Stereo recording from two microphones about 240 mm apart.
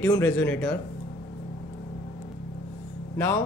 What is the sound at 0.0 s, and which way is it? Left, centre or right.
Speech, centre.